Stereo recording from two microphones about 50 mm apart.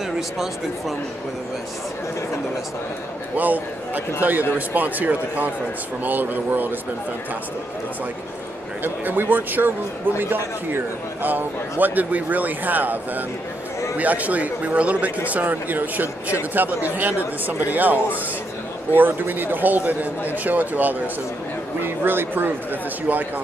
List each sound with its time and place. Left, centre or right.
3.3 s speech: right
8.8 s a man's voice: right